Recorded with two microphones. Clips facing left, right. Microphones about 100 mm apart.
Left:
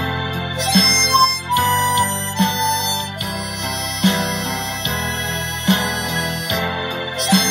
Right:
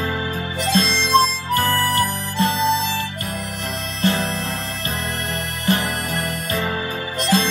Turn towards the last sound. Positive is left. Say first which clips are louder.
# left 1 dB
turn(degrees=15)  # may be behind; listen again after turning